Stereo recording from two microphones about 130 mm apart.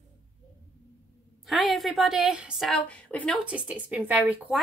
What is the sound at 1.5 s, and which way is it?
A woman's voice, centre (ahead or behind).